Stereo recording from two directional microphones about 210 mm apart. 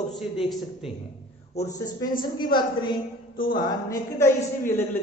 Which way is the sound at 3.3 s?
40° left (ahead or behind).